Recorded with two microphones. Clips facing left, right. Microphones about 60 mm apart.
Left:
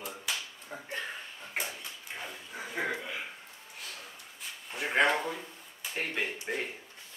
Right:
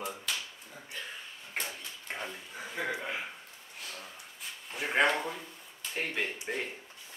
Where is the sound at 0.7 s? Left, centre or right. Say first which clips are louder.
Left 5 dB; left.